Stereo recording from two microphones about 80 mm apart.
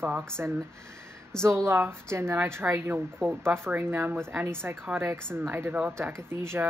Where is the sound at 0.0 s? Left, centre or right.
Right.